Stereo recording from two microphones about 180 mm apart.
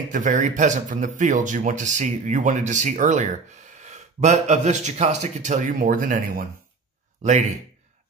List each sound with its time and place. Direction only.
0.1 s speech: 45° right (ahead or behind)